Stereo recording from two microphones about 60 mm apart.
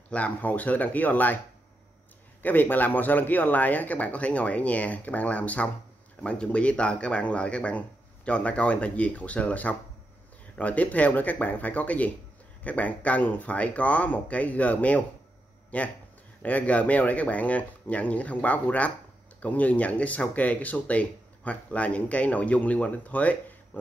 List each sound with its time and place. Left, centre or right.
0.1 s speech: left
2.4 s speech: left